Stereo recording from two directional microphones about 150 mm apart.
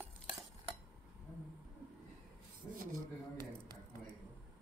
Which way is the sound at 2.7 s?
70° right (ahead or behind).